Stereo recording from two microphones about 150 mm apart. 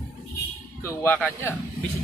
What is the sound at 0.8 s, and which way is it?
Speech, 15° left (ahead or behind).